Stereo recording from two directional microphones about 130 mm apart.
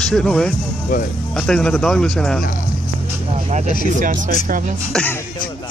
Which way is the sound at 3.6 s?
90° left.